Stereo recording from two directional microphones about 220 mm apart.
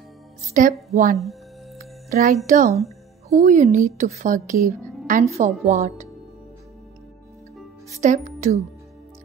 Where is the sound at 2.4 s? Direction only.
35° right (ahead or behind).